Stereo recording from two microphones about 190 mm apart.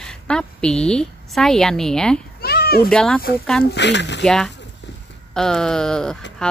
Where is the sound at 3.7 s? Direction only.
65° left (ahead or behind).